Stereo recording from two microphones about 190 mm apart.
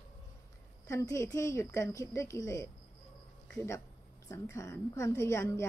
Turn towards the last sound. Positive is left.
turn(degrees=15)  # may be behind; listen again after turning